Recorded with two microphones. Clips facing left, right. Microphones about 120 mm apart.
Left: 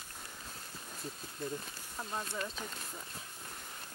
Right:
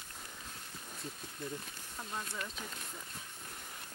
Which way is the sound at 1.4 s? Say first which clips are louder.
Left 3 dB; 35° left (ahead or behind).